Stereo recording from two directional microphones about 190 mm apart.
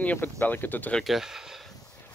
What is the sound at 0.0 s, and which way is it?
Speech, 10° left (ahead or behind).